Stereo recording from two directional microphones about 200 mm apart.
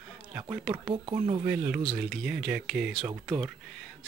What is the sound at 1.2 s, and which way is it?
Speech, 20° right (ahead or behind).